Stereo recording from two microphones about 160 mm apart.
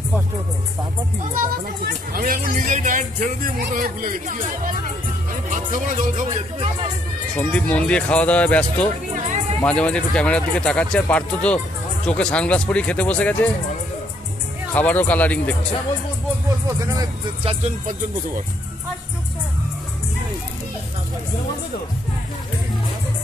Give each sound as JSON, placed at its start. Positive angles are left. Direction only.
{"t": 1.3, "sound": "speech", "side_deg": -65}
{"t": 5.5, "sound": "music", "side_deg": -55}
{"t": 6.2, "sound": "speech", "side_deg": -35}
{"t": 7.3, "sound": "speech", "side_deg": 10}
{"t": 14.7, "sound": "speech", "side_deg": 10}